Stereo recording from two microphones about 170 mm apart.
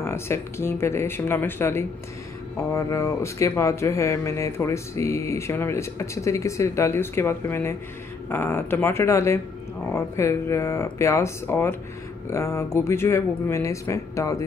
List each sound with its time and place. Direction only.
0.0 s speech: 15° left (ahead or behind)